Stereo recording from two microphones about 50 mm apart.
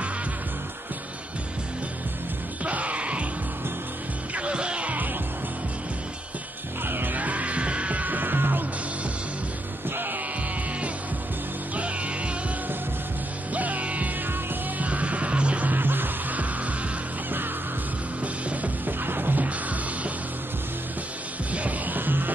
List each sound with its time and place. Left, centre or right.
2.6 s music: right
4.4 s music: right
6.8 s music: right
11.7 s music: right
13.5 s music: right
15.7 s music: right
18.2 s music: right
19.0 s music: right
21.5 s music: right